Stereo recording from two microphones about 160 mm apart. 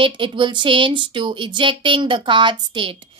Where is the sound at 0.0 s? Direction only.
30° right (ahead or behind).